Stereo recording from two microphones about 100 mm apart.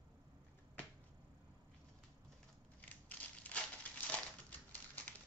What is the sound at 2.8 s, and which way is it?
Crushing, 15° left (ahead or behind).